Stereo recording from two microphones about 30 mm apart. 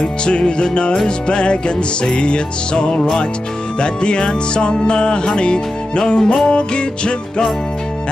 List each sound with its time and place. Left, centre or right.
0.0 s music: left